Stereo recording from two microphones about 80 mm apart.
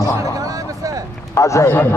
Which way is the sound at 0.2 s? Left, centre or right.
Right.